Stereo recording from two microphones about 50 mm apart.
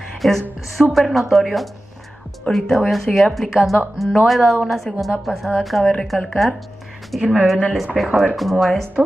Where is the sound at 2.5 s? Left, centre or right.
Left.